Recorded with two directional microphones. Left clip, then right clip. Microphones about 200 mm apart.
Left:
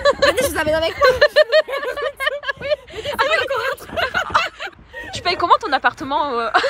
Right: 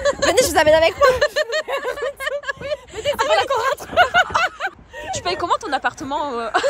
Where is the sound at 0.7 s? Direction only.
20° right (ahead or behind).